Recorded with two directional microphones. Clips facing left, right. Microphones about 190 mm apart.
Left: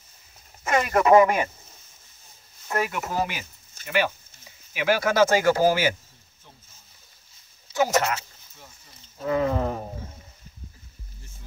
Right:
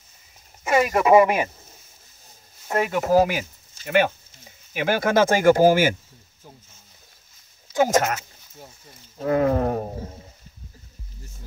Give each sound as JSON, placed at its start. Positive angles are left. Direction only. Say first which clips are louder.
{"t": 0.7, "sound": "speech", "louder": "right 2 dB", "side_deg": -5}
{"t": 2.7, "sound": "speech", "louder": "right 8 dB", "side_deg": -30}
{"t": 3.8, "sound": "speech", "louder": "right 5 dB", "side_deg": -50}
{"t": 7.7, "sound": "speech", "louder": "right 3 dB", "side_deg": -50}
{"t": 9.2, "sound": "speech", "louder": "right 4 dB", "side_deg": -50}